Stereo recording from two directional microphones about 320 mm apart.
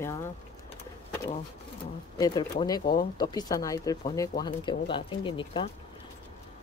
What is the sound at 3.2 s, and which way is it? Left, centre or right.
Speech, centre.